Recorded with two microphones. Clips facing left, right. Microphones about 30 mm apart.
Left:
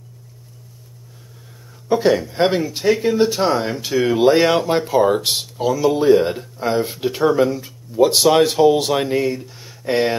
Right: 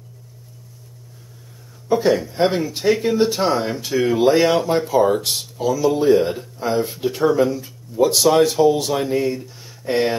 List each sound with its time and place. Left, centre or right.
1.9 s speech: left
2.8 s speech: centre; by 9.2 s left
9.2 s speech: centre